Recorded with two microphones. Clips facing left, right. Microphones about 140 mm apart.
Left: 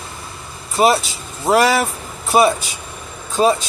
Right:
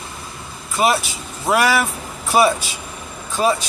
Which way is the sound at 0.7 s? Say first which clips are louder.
Left 3 dB; 30° left (ahead or behind).